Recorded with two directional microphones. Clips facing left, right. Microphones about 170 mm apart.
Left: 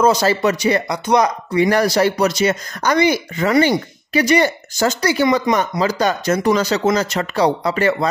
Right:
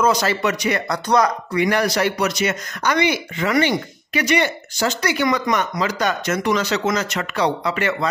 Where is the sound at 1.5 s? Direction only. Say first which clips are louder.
Left 4 dB; 35° left (ahead or behind).